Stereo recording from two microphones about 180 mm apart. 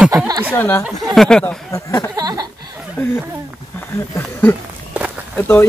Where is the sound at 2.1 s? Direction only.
20° right (ahead or behind).